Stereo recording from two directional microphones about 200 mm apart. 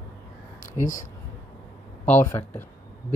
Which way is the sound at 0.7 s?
40° left (ahead or behind).